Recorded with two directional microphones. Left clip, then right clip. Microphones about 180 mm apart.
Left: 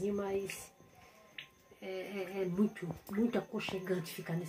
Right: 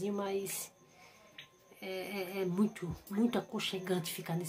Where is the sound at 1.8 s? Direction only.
10° right (ahead or behind).